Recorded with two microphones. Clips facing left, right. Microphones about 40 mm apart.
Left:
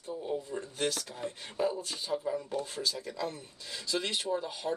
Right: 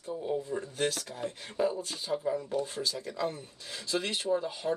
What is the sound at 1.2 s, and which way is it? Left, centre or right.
Speech, centre.